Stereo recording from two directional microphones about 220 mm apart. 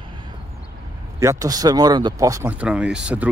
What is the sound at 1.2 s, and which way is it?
Speech, 15° right (ahead or behind).